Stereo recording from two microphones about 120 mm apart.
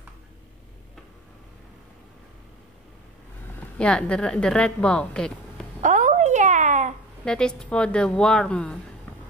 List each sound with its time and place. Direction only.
3.7 s a woman's voice: 10° left (ahead or behind)
5.8 s a sound: 90° right
7.2 s a woman's voice: 5° left (ahead or behind)